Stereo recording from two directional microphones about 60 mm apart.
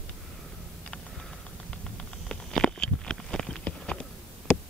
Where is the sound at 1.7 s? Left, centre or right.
Centre.